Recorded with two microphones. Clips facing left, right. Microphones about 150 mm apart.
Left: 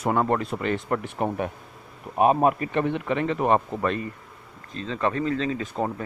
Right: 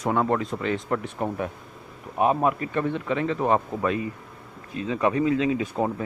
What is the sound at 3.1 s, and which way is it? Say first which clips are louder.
Speech: even; 5° left (ahead or behind).